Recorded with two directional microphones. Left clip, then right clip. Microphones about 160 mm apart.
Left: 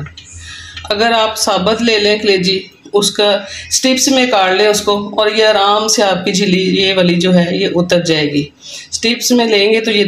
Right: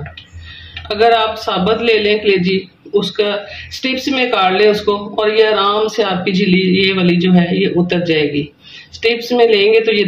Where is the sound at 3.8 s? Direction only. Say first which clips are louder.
Left 4 dB; 35° left (ahead or behind).